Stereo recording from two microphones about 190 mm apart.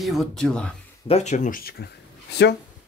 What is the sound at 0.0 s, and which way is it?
Speech, centre (ahead or behind).